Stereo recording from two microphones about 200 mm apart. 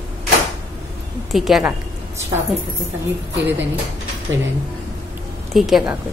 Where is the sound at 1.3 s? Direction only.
Centre (ahead or behind).